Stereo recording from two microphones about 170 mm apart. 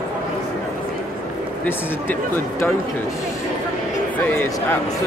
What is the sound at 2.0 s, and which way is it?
Speech, 10° left (ahead or behind).